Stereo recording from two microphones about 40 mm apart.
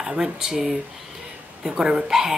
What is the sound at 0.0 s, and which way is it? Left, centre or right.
Speech, centre.